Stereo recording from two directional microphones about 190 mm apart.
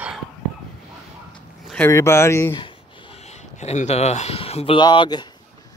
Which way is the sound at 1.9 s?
15° left (ahead or behind).